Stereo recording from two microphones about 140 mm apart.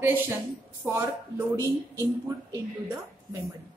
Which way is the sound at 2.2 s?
20° right (ahead or behind).